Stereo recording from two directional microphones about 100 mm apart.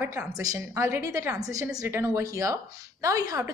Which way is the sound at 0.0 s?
25° right (ahead or behind).